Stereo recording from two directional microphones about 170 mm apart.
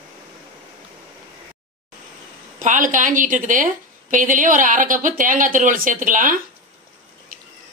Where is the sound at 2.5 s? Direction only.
50° right (ahead or behind).